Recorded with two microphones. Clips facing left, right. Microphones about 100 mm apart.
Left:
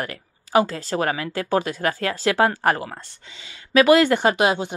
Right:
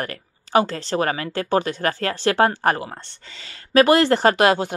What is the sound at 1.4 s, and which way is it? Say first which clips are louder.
Speech: right 1 dB; 55° right (ahead or behind).